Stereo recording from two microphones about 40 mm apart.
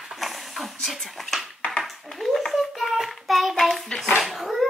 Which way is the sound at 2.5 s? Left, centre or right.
Centre.